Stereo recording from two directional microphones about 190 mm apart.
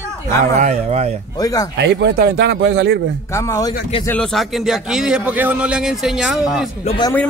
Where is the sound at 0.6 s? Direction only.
40° right (ahead or behind).